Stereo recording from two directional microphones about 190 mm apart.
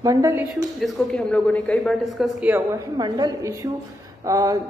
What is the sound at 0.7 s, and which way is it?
Speech, centre (ahead or behind).